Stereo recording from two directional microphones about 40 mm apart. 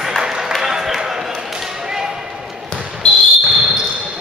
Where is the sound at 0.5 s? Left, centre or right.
Centre.